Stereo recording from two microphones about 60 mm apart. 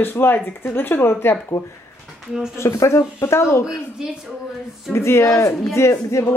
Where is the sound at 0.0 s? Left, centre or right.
Left.